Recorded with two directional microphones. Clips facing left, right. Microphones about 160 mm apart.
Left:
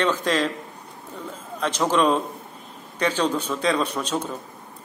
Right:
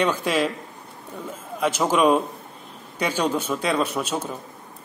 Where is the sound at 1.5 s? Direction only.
10° right (ahead or behind).